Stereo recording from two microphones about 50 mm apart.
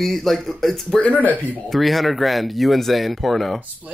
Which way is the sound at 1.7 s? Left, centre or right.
Centre.